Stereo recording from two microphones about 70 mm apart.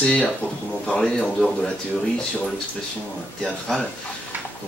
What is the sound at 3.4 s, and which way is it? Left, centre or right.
Speech, centre.